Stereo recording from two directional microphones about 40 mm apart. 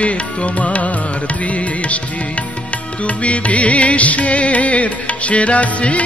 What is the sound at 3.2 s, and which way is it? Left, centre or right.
Music, left.